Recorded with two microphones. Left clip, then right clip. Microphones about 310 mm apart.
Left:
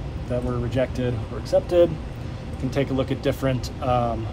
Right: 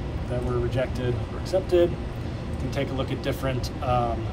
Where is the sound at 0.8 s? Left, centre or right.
Left.